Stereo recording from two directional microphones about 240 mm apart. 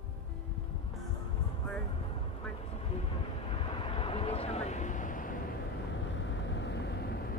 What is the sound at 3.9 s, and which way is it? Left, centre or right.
Vehicle, left.